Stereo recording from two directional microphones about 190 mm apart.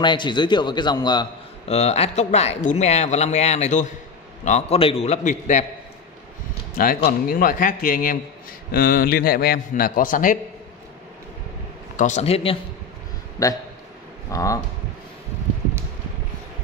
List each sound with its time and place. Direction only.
0.0 s a man's voice: 25° left (ahead or behind)
1.7 s speech: 35° left (ahead or behind)
7.1 s a man's voice: 50° left (ahead or behind)
12.0 s speech: 35° left (ahead or behind)
13.4 s speech: 20° left (ahead or behind)